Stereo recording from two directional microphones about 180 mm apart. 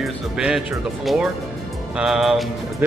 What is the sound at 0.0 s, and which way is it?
A man's voice, 5° right (ahead or behind).